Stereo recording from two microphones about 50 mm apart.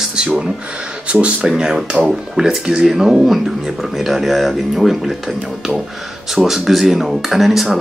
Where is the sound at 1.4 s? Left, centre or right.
Centre.